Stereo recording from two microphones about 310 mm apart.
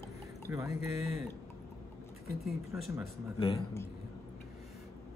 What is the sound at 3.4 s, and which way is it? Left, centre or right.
Speech, centre.